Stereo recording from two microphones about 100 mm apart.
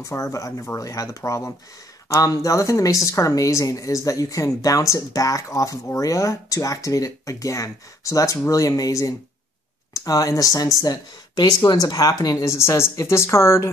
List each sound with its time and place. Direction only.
0.0 s a woman's voice: 30° left (ahead or behind)